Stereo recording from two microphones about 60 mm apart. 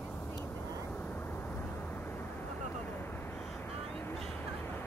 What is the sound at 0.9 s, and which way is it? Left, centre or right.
Vehicle, left.